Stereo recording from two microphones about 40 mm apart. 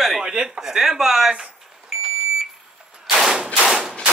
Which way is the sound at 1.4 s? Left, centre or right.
Centre.